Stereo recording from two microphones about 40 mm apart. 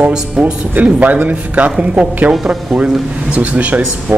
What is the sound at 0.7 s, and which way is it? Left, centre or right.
Speech, right.